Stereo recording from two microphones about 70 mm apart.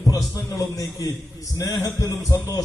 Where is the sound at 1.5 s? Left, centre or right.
Left.